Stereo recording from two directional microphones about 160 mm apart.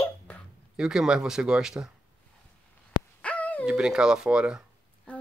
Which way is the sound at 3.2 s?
10° left (ahead or behind).